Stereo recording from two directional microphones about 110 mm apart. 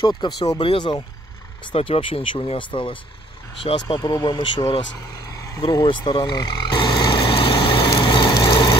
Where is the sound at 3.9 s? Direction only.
35° left (ahead or behind).